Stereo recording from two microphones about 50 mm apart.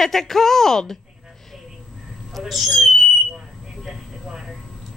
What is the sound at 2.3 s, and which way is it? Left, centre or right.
Speech, centre.